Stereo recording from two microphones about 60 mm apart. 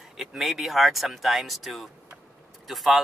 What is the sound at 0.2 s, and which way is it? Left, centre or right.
Speech, centre.